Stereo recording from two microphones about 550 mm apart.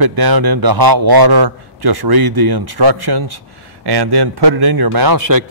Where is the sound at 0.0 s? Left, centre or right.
Right.